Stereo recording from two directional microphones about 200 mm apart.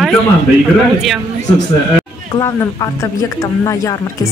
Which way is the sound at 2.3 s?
15° left (ahead or behind).